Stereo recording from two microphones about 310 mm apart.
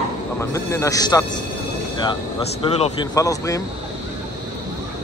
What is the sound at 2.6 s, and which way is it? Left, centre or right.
A man's voice, centre.